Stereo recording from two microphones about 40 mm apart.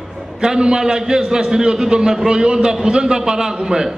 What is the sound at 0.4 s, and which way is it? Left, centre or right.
A man's voice, centre.